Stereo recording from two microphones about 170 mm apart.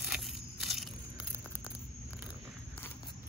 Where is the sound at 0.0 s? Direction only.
Centre (ahead or behind).